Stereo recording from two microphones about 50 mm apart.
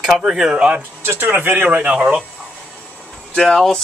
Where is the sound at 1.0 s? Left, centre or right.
Right.